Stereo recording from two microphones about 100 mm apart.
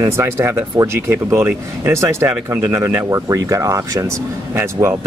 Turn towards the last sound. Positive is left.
turn(degrees=-25)  # may be behind; listen again after turning